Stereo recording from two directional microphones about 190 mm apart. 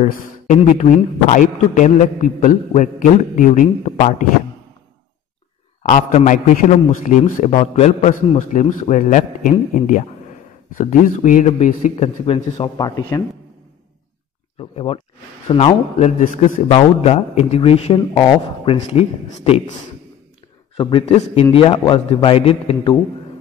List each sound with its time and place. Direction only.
0.0 s a man's voice: 35° left (ahead or behind)
5.8 s a man's voice: 40° left (ahead or behind); by 13.2 s 20° left (ahead or behind)
14.6 s a man's voice: 30° left (ahead or behind)
20.7 s a man's voice: 30° left (ahead or behind)